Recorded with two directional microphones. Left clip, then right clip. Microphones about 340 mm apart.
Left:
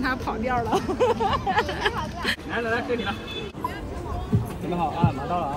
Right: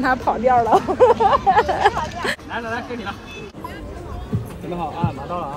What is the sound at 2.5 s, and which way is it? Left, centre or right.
Speech, right.